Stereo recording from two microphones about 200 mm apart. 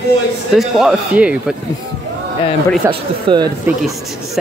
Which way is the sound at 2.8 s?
15° right (ahead or behind).